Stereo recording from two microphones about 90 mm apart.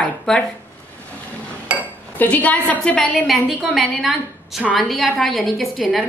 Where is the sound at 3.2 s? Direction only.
Centre (ahead or behind).